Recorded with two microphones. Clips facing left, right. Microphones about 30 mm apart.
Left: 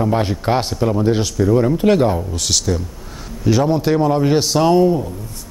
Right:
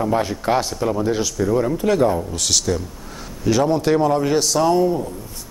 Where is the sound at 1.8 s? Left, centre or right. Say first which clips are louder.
Left 3 dB; left.